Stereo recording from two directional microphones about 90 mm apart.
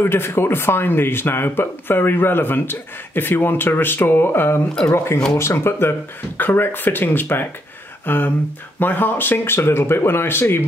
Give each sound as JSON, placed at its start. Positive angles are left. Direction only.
{"t": 0.0, "sound": "speech", "side_deg": 25}
{"t": 8.0, "sound": "a sound", "side_deg": 20}
{"t": 8.7, "sound": "speech", "side_deg": 20}